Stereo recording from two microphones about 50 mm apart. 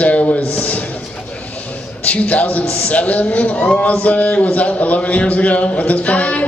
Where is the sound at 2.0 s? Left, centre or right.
Left.